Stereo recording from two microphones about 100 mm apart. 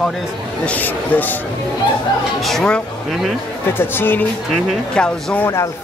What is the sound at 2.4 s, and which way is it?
Speech, 5° left (ahead or behind).